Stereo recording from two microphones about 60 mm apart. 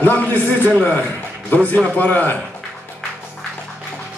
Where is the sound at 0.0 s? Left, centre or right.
Left.